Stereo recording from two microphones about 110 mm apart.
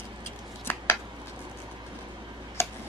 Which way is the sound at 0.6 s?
20° left (ahead or behind).